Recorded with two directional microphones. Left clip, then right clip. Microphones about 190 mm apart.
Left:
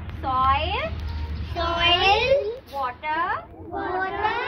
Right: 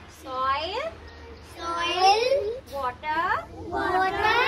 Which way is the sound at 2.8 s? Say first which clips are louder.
Left 2 dB; 35° left (ahead or behind).